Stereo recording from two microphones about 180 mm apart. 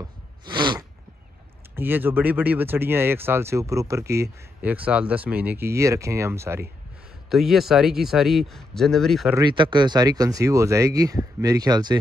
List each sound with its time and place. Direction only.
0.0 s a sound: 25° right (ahead or behind)
1.8 s speech: 10° right (ahead or behind)
7.2 s speech: centre (ahead or behind)
9.3 s speech: 25° right (ahead or behind)